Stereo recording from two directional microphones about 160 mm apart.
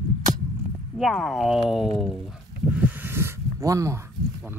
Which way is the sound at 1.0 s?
Centre (ahead or behind).